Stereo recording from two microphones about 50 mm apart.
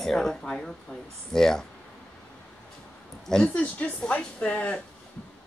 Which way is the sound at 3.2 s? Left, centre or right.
Centre.